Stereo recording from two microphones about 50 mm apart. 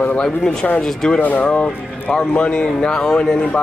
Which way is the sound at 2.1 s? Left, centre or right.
Centre.